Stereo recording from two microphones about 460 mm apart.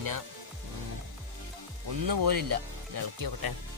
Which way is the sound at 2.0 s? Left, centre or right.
Right.